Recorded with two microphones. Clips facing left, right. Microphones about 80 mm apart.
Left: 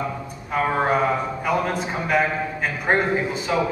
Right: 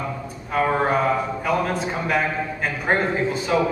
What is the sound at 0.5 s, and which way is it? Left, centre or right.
A man's voice, centre.